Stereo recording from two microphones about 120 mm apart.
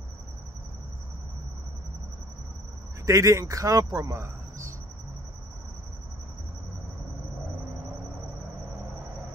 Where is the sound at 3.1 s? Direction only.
25° right (ahead or behind).